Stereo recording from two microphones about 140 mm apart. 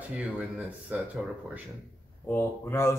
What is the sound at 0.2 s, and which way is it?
Speech, 10° right (ahead or behind).